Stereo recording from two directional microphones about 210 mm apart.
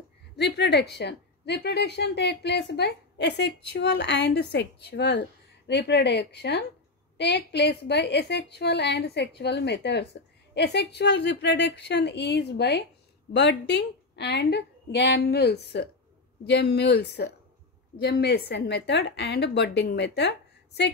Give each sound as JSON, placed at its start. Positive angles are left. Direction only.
{"t": 0.4, "sound": "a woman's voice", "side_deg": 50}